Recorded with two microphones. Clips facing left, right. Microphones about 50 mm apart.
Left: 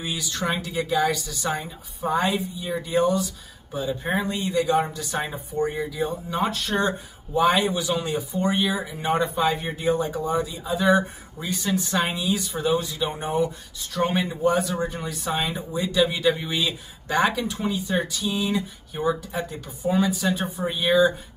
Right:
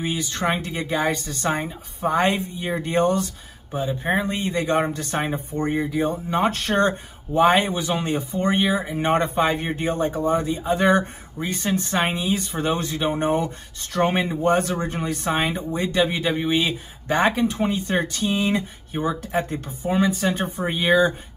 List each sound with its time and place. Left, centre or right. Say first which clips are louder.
0.0 s speech: right 4 dB; right
3.7 s speech: right 3 dB; right
11.4 s speech: right 1 dB; right
12.7 s speech: right 2 dB; right
17.7 s speech: right 2 dB; right
19.8 s speech: right 1 dB; right